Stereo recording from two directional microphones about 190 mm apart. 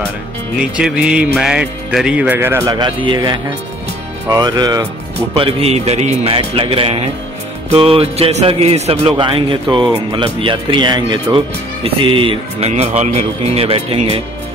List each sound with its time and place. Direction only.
0.7 s speech: 5° right (ahead or behind); by 3.2 s 25° right (ahead or behind)
4.3 s speech: 20° right (ahead or behind)
5.3 s speech: 30° right (ahead or behind)